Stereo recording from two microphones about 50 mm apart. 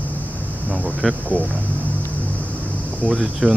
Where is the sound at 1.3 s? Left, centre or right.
Right.